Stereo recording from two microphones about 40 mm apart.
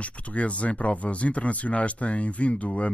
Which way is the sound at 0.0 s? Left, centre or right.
Left.